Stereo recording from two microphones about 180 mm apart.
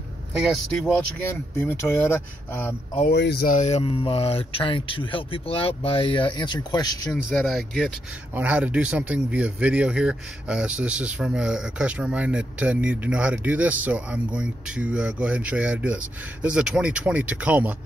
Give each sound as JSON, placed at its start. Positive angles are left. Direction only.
{"t": 0.4, "sound": "speech", "side_deg": 0}
{"t": 1.7, "sound": "speech", "side_deg": 15}
{"t": 3.1, "sound": "speech", "side_deg": 65}
{"t": 3.5, "sound": "speech", "side_deg": 40}
{"t": 7.1, "sound": "speech", "side_deg": 5}